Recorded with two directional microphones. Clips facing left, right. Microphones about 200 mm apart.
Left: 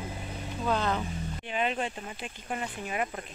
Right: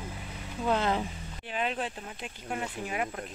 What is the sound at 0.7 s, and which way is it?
Speech, 20° right (ahead or behind).